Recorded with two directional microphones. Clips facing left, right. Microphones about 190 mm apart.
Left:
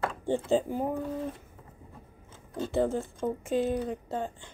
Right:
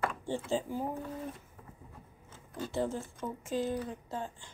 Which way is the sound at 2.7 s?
60° left (ahead or behind).